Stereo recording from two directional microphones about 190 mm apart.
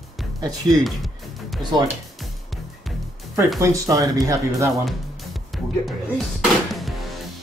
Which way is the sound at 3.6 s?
15° right (ahead or behind).